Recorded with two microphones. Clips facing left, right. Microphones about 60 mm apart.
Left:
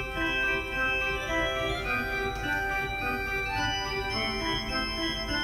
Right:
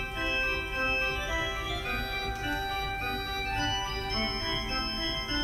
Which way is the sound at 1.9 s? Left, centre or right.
Left.